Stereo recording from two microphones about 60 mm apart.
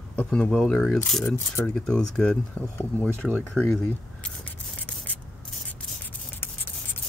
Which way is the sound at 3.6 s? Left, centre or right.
Left.